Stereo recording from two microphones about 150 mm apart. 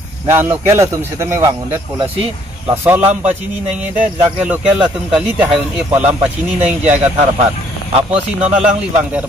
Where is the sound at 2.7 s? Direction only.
15° right (ahead or behind).